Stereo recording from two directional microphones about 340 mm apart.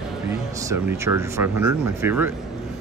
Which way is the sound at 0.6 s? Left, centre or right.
Centre.